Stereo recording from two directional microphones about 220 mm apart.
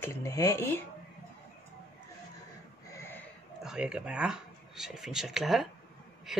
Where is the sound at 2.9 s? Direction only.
10° left (ahead or behind).